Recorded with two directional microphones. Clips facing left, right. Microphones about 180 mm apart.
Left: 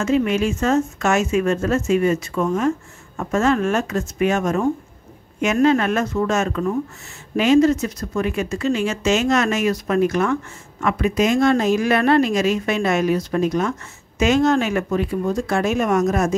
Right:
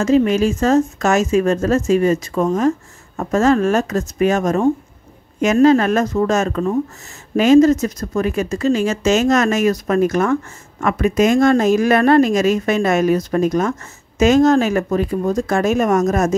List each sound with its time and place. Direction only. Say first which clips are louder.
0.0 s speech: right 4 dB; 35° right (ahead or behind)